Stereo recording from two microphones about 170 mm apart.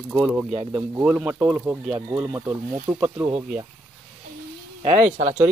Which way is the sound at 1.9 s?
30° right (ahead or behind).